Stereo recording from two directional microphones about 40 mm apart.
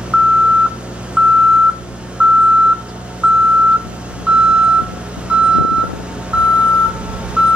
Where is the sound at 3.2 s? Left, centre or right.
Right.